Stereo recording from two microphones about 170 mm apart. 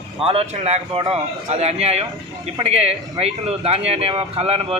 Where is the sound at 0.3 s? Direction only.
35° right (ahead or behind).